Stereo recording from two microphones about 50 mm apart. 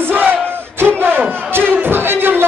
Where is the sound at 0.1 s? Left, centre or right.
Right.